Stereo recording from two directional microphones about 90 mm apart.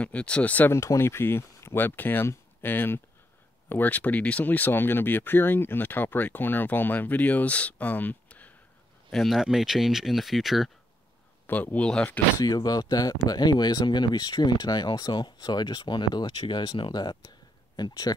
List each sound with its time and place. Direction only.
0.0 s speech: 15° left (ahead or behind)
0.7 s speech: 30° left (ahead or behind)
9.1 s speech: centre (ahead or behind)
11.4 s speech: 20° left (ahead or behind)
12.4 s speech: 45° left (ahead or behind)
17.7 s speech: 45° left (ahead or behind)